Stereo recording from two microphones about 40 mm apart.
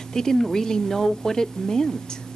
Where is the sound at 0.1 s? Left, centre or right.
Centre.